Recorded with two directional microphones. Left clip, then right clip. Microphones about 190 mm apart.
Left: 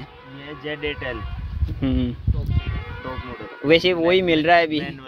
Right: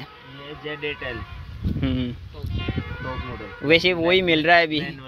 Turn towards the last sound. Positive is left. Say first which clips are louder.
# left 1 dB
turn(degrees=-10)  # may be behind; listen again after turning